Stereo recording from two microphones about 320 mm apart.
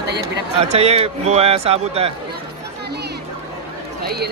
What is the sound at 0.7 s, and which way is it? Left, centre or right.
A man's voice, centre.